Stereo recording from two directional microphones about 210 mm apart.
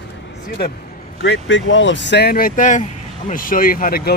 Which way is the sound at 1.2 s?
60° left (ahead or behind).